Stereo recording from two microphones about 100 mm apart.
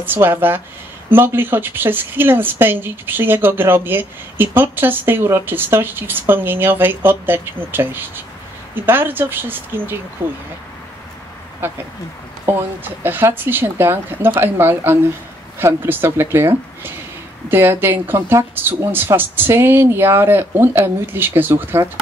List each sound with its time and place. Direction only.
0.0 s speech: 20° right (ahead or behind)
11.6 s speech: 20° right (ahead or behind)